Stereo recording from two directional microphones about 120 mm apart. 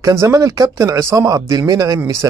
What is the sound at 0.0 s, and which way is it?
Speech, 25° right (ahead or behind).